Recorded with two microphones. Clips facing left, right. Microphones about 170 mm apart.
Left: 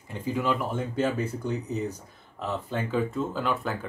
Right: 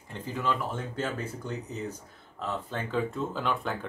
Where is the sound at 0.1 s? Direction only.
10° left (ahead or behind).